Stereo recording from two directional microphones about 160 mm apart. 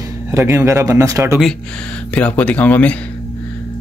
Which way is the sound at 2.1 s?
10° left (ahead or behind).